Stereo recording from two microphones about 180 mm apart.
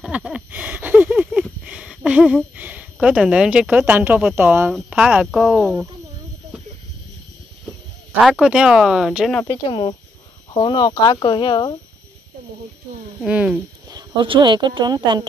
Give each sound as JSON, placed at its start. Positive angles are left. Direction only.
{"t": 0.0, "sound": "a sound", "side_deg": -5}
{"t": 4.7, "sound": "speech", "side_deg": -5}
{"t": 8.2, "sound": "speech", "side_deg": 0}
{"t": 9.5, "sound": "speech", "side_deg": 30}
{"t": 13.2, "sound": "speech", "side_deg": -5}
{"t": 13.8, "sound": "speech", "side_deg": -25}